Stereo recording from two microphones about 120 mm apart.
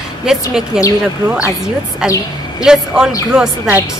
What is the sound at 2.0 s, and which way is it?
Speech, 5° right (ahead or behind).